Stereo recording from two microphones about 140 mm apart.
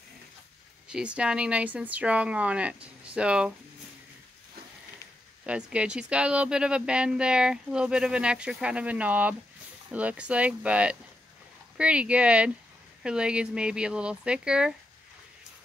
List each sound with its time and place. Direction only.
0.8 s speech: 5° right (ahead or behind)
5.4 s speech: 10° right (ahead or behind)